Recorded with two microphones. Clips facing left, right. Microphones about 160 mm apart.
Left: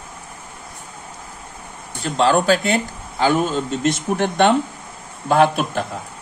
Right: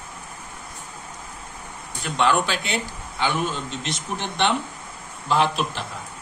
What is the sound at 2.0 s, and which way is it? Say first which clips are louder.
A man's voice: left 4 dB; 35° left (ahead or behind).